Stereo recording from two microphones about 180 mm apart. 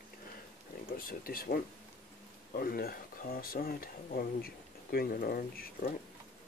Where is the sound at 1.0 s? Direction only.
55° left (ahead or behind).